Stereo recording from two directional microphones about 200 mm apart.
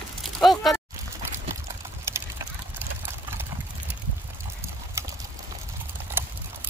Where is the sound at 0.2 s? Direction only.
Centre (ahead or behind).